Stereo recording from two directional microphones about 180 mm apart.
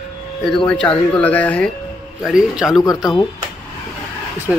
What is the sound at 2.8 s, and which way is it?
Speech, 20° left (ahead or behind).